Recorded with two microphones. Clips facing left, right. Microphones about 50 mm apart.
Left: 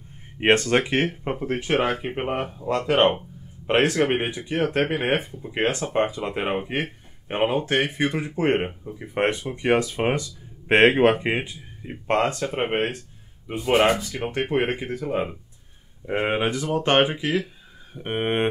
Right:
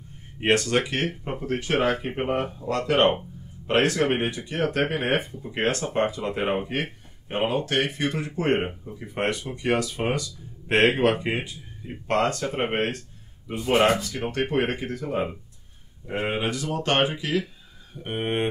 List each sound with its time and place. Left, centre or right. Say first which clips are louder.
0.4 s speech: left 3 dB; left
6.4 s speech: right 1 dB; centre
7.2 s speech: left 2 dB; left
13.6 s speech: left 1 dB; centre; by 18.5 s left